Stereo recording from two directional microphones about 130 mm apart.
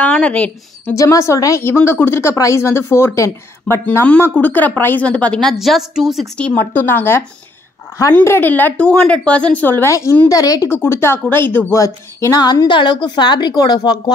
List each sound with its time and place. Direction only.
0.0 s a woman's voice: 10° left (ahead or behind)
0.9 s a woman's voice: 25° left (ahead or behind); by 6.2 s 5° right (ahead or behind)
6.3 s a woman's voice: 10° left (ahead or behind); by 10.7 s 30° left (ahead or behind)
10.7 s a woman's voice: 20° left (ahead or behind)